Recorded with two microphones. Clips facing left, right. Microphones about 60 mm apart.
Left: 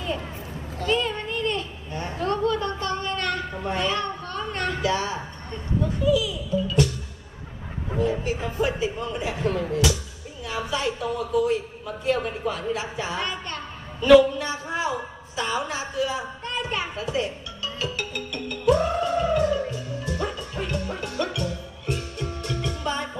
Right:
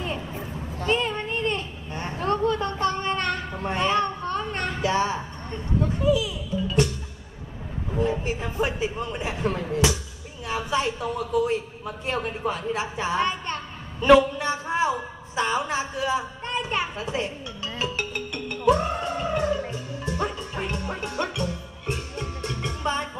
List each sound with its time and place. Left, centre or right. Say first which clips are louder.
0.7 s a sound: even; right
6.0 s music: left 2 dB; right
8.0 s a woman's voice: left 1 dB; right
17.7 s music: right 2 dB; right